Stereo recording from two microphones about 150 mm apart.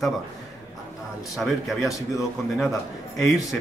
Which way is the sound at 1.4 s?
Centre (ahead or behind).